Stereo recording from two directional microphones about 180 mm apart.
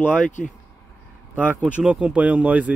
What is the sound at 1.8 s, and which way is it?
Speech, 5° right (ahead or behind).